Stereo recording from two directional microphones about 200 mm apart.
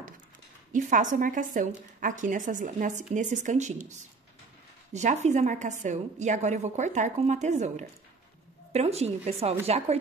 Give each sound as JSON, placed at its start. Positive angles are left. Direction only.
{"t": 0.7, "sound": "a woman's voice", "side_deg": -40}
{"t": 4.9, "sound": "a woman's voice", "side_deg": -35}